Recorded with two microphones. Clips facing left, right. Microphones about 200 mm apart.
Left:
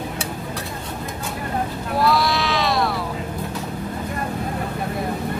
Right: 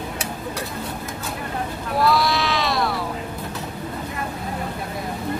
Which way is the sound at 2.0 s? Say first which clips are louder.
Even; centre (ahead or behind).